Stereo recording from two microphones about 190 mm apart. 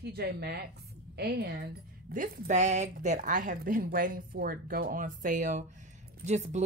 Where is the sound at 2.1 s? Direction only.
45° right (ahead or behind).